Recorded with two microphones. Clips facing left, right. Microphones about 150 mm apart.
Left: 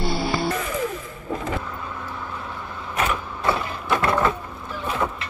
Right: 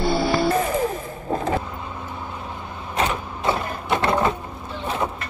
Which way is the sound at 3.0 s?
30° right (ahead or behind).